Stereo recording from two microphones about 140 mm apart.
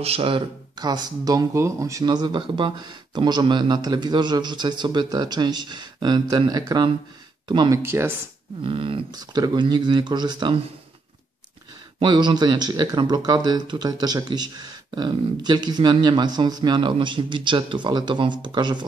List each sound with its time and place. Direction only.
0.0 s speech: 45° right (ahead or behind)
7.7 s speech: 15° right (ahead or behind)
8.6 s speech: 40° right (ahead or behind)
12.0 s speech: 35° right (ahead or behind)